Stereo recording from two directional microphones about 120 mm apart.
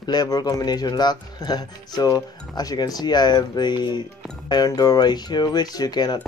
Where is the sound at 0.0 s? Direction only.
35° left (ahead or behind).